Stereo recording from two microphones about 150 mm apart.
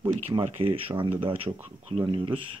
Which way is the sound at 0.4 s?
40° right (ahead or behind).